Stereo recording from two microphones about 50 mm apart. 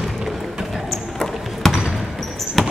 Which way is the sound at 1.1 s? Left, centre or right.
Centre.